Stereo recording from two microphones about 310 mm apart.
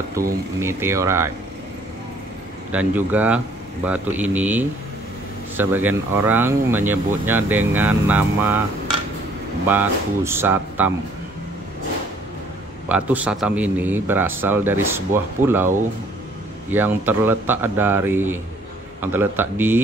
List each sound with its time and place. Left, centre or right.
0.6 s a man's voice: centre
2.7 s a man's voice: centre
9.7 s a man's voice: centre
12.8 s a man's voice: centre
16.7 s a man's voice: centre